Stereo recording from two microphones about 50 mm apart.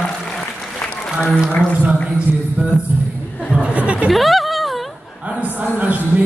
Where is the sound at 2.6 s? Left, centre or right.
Right.